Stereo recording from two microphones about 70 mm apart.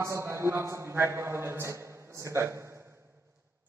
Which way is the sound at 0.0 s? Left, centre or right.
Right.